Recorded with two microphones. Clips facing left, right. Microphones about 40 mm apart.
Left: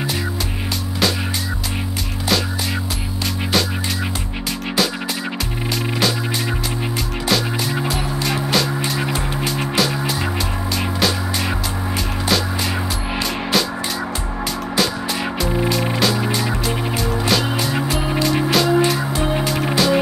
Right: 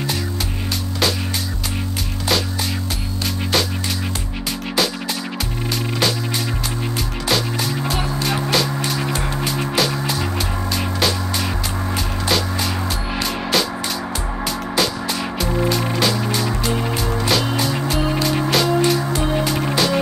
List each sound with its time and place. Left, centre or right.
8.2 s music: centre
8.9 s music: centre
9.4 s music: centre
17.8 s music: centre